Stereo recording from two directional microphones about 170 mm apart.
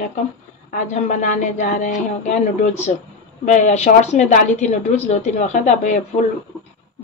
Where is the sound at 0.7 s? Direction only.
45° left (ahead or behind).